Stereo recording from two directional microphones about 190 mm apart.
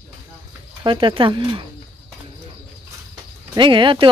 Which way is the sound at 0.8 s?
25° right (ahead or behind).